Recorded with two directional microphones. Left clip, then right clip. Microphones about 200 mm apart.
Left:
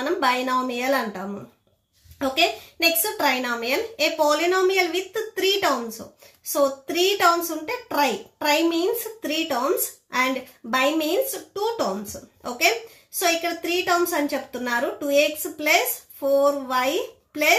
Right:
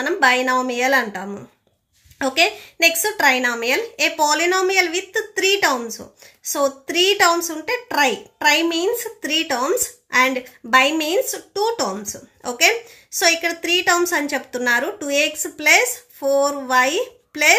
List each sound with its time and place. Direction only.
0.0 s a woman's voice: 35° right (ahead or behind)